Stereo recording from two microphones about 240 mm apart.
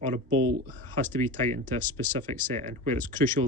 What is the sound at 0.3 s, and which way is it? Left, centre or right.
Speech, centre.